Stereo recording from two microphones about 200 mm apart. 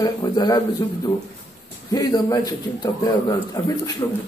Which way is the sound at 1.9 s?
20° left (ahead or behind).